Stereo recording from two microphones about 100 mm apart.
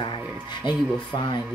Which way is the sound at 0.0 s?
50° left (ahead or behind).